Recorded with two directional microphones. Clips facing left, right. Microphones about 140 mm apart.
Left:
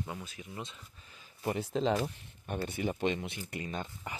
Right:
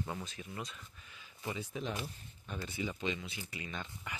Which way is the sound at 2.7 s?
55° left (ahead or behind).